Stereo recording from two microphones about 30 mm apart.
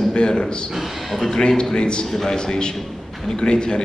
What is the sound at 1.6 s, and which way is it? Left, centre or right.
Speech, left.